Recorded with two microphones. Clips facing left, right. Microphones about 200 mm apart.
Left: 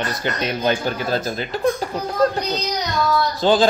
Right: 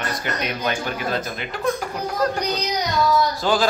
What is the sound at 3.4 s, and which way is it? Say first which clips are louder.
Speech: left 5 dB; 25° left (ahead or behind).